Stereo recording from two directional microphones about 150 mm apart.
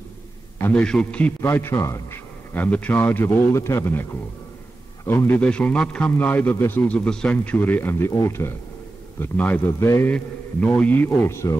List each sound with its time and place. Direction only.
0.6 s a man's voice: 10° left (ahead or behind)